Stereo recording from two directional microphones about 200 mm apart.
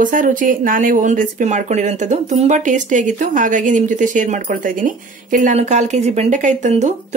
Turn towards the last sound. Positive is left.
turn(degrees=-35)  # may be behind; listen again after turning